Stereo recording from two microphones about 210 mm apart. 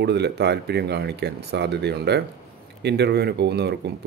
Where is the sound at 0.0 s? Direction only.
55° right (ahead or behind).